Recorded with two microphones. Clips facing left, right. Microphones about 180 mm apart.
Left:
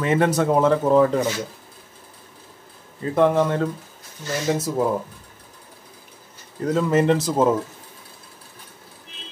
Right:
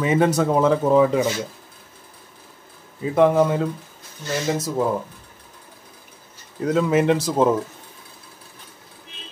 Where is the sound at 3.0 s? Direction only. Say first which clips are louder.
Right 2 dB; 5° right (ahead or behind).